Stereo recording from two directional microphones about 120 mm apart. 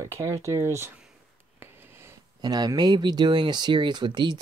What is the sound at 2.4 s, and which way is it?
Speech, 35° right (ahead or behind).